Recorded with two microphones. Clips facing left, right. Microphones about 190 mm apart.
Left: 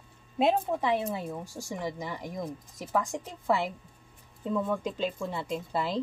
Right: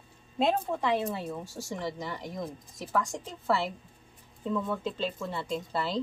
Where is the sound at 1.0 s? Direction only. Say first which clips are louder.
Even; 15° left (ahead or behind).